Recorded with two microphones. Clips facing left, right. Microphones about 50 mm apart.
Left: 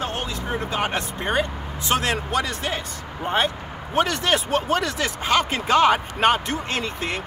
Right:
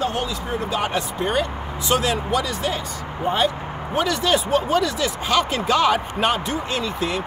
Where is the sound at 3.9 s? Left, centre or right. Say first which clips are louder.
Right 1 dB; left.